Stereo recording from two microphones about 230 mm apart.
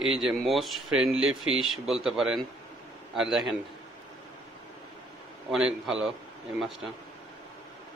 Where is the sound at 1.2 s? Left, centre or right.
Right.